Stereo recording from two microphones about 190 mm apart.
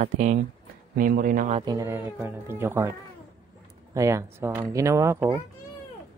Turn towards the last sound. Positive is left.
turn(degrees=-15)  # may be behind; listen again after turning